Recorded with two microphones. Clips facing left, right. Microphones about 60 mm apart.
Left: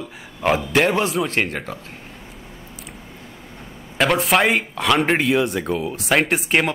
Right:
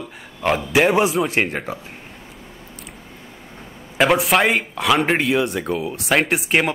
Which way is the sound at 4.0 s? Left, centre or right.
Centre.